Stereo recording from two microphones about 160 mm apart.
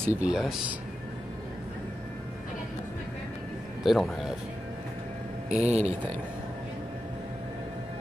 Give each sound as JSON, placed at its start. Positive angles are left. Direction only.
{"t": 0.0, "sound": "speech", "side_deg": -10}
{"t": 3.8, "sound": "speech", "side_deg": 0}
{"t": 5.5, "sound": "speech", "side_deg": -45}